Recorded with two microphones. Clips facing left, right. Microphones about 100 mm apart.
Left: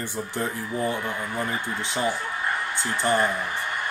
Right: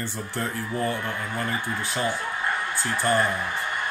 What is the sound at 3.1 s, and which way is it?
Speech, 20° left (ahead or behind).